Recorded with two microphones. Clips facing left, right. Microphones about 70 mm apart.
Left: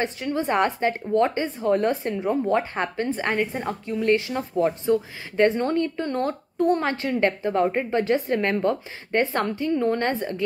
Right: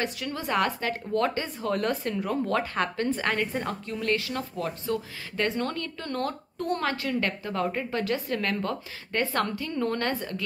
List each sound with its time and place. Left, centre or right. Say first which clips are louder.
0.0 s speech: left 6 dB; left